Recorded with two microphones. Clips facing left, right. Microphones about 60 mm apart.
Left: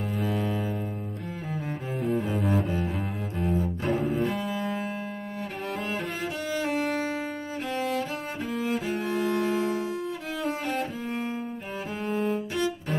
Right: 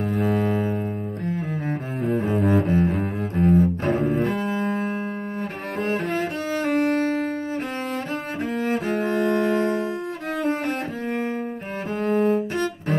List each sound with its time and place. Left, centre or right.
0.1 s double bass: right
1.2 s cello: right
3.8 s double bass: right
6.6 s music: right
8.5 s cello: right
12.0 s cello: right